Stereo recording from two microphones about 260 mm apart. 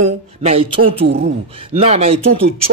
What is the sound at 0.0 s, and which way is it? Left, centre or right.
Speech, right.